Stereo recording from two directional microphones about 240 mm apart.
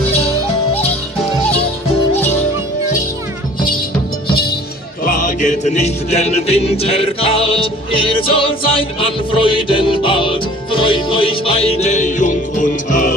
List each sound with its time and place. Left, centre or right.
5.0 s music: left